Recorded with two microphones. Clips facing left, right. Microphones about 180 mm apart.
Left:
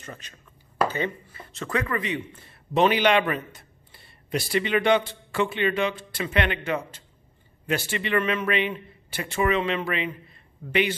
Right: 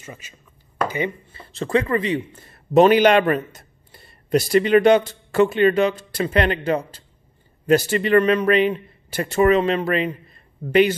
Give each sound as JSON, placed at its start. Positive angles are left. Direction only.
{"t": 0.0, "sound": "speech", "side_deg": -10}
{"t": 1.3, "sound": "a man's voice", "side_deg": -30}